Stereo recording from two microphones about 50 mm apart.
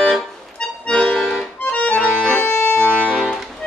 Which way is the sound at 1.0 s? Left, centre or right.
Centre.